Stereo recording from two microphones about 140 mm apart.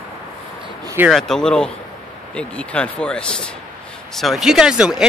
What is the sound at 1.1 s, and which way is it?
Speech, 5° left (ahead or behind).